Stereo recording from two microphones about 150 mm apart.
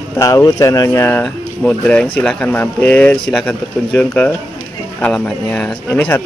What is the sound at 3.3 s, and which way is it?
Speech, centre (ahead or behind).